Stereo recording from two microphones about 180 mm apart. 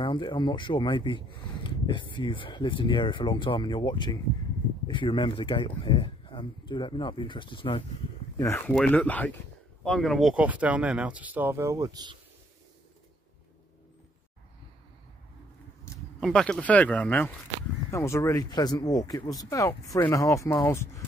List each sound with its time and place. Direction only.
0.0 s speech: 25° left (ahead or behind)
8.4 s speech: 15° left (ahead or behind); by 12.2 s 20° right (ahead or behind)
16.2 s speech: 5° left (ahead or behind)